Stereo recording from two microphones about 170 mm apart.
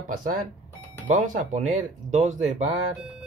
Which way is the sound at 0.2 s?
50° right (ahead or behind).